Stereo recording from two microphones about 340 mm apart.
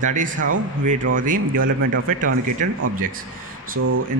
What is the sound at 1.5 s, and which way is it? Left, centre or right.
Speech, right.